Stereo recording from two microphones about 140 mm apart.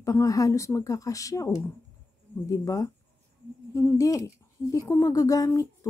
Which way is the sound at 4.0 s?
25° left (ahead or behind).